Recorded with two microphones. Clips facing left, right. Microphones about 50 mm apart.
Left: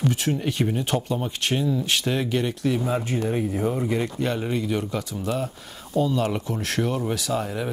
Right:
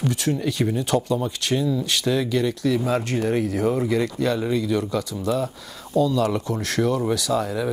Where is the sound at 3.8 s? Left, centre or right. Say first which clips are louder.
Right 3 dB; right.